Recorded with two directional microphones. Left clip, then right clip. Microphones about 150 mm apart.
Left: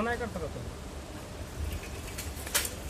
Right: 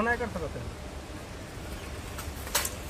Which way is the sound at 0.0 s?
25° right (ahead or behind).